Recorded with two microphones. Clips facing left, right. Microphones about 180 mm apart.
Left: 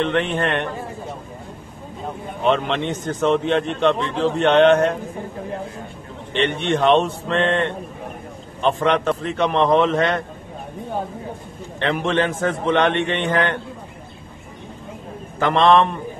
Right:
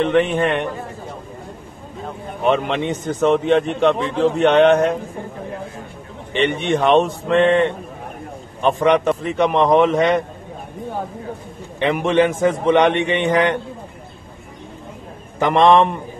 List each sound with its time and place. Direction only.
0.0 s a man's voice: 5° right (ahead or behind)
2.4 s a man's voice: 10° right (ahead or behind)
6.3 s a man's voice: 10° right (ahead or behind)
11.8 s a man's voice: 15° right (ahead or behind)
15.3 s a man's voice: 15° right (ahead or behind)